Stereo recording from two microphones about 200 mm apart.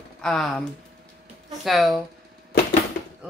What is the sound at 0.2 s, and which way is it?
Speech, 5° left (ahead or behind).